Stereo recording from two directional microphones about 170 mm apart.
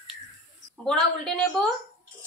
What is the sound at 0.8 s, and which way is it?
Speech, 5° left (ahead or behind).